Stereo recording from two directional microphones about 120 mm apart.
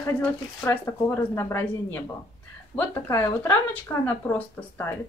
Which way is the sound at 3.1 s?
20° left (ahead or behind).